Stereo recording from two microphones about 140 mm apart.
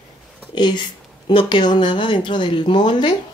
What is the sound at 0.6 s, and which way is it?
Speech, 30° left (ahead or behind).